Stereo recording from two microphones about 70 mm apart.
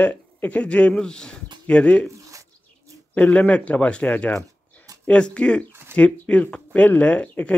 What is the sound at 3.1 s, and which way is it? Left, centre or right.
Speech, left.